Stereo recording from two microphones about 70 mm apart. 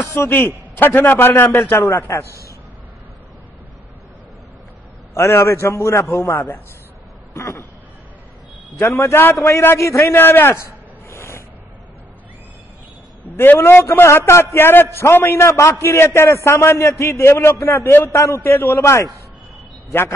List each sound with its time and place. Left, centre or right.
0.0 s a man's voice: left
0.7 s a man's voice: left
5.1 s a man's voice: left
8.7 s a man's voice: left
13.4 s a man's voice: left